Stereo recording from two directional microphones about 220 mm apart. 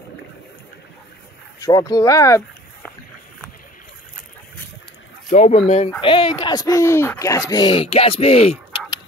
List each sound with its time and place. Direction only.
1.6 s speech: 15° left (ahead or behind)
5.3 s speech: 30° left (ahead or behind)
5.9 s speech: 20° left (ahead or behind)